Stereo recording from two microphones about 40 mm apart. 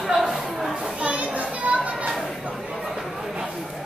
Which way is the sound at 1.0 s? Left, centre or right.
Right.